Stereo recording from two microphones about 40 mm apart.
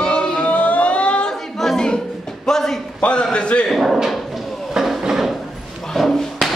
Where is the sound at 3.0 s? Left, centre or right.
Left.